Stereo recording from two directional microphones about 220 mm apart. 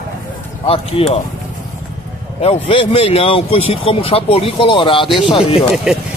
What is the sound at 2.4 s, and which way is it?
A man's voice, 25° left (ahead or behind).